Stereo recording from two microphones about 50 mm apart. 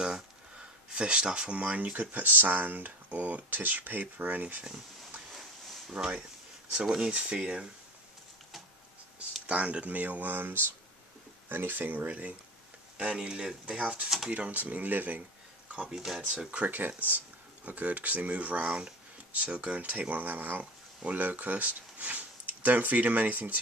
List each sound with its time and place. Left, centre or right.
0.0 s speech: centre; by 4.6 s right
5.9 s speech: right
9.5 s speech: right
12.9 s speech: centre
14.0 s speech: centre
14.3 s speech: right
15.7 s speech: centre
16.4 s speech: right
20.0 s speech: right